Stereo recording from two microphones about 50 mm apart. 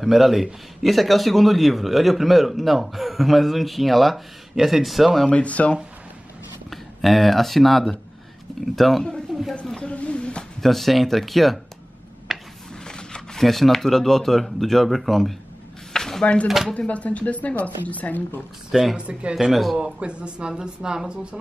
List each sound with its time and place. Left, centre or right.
0.0 s a man's voice: centre
5.3 s speech: left
6.7 s a man's voice: centre
9.8 s a sound: left
10.6 s a man's voice: centre
12.3 s a sound: centre
12.8 s speech: centre
15.9 s a sound: centre
16.4 s a man's voice: centre
16.7 s speech: left
18.7 s speech: centre
18.9 s speech: right
19.5 s a man's voice: centre
19.8 s speech: right